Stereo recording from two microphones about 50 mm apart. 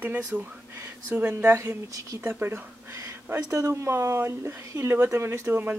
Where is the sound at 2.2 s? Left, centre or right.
Right.